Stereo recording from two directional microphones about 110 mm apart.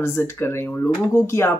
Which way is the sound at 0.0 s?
25° left (ahead or behind).